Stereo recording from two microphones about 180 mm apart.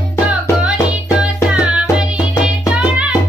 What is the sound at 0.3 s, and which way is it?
Music, 5° right (ahead or behind).